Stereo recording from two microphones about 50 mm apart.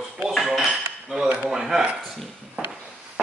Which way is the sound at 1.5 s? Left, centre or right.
Centre.